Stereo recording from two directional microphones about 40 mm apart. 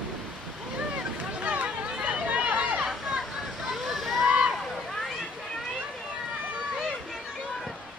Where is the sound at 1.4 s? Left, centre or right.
Right.